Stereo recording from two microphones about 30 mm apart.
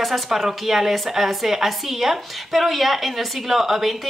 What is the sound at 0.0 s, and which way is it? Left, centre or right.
A woman's voice, centre.